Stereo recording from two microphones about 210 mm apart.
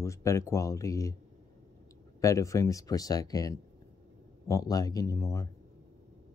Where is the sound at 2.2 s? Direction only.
15° left (ahead or behind).